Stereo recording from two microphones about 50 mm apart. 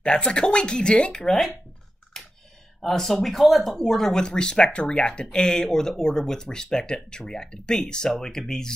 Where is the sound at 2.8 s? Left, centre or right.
Centre.